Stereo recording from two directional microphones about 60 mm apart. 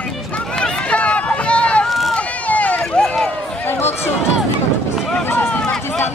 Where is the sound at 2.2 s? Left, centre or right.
Left.